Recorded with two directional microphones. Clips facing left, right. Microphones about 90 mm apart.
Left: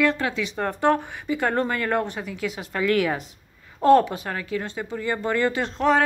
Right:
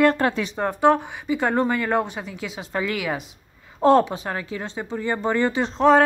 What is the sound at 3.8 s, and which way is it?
A woman's voice, 25° right (ahead or behind).